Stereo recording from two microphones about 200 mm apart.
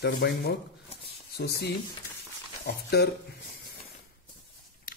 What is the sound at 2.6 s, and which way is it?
Speech, 55° left (ahead or behind).